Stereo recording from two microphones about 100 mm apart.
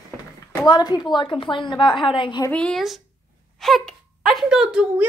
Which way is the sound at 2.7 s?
Centre (ahead or behind).